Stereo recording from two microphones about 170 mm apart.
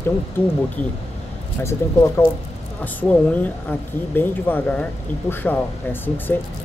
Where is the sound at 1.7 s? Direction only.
15° left (ahead or behind).